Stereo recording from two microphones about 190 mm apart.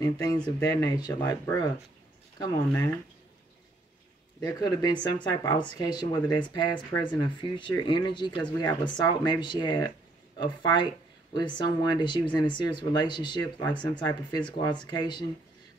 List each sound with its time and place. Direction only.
0.0 s speech: 20° left (ahead or behind)
4.4 s speech: 20° left (ahead or behind)